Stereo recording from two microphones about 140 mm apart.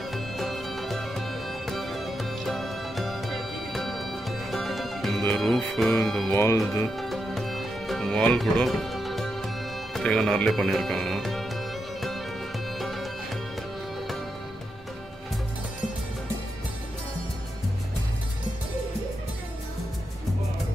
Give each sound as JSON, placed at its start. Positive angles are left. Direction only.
{"t": 0.1, "sound": "music", "side_deg": 0}
{"t": 5.2, "sound": "speech", "side_deg": 5}
{"t": 6.3, "sound": "speech", "side_deg": 20}
{"t": 7.0, "sound": "music", "side_deg": 0}